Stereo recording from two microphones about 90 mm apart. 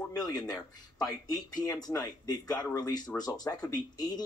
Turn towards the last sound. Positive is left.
turn(degrees=45)  # may be behind; listen again after turning